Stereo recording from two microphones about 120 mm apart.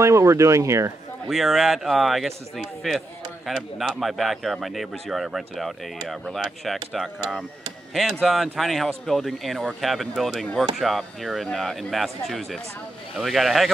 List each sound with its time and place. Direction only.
0.0 s speech: 25° right (ahead or behind)
1.3 s speech: centre (ahead or behind)